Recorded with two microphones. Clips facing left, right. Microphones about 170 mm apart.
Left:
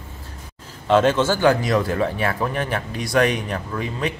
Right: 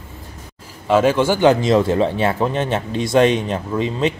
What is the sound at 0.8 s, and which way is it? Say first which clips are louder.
Speech: right 2 dB; 10° right (ahead or behind).